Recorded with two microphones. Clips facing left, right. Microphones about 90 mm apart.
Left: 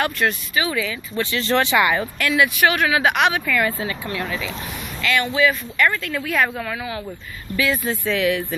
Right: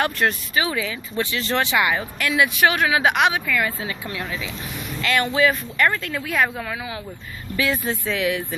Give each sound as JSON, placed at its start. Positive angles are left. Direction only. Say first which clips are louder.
{"t": 0.0, "sound": "speech", "louder": "even", "side_deg": -35}
{"t": 1.1, "sound": "speech", "louder": "left 3 dB", "side_deg": -10}
{"t": 2.1, "sound": "speech", "louder": "left 1 dB", "side_deg": -20}
{"t": 3.4, "sound": "speech", "louder": "left 2 dB", "side_deg": -5}
{"t": 5.0, "sound": "speech", "louder": "even", "side_deg": -40}
{"t": 7.5, "sound": "speech", "louder": "left 1 dB", "side_deg": -30}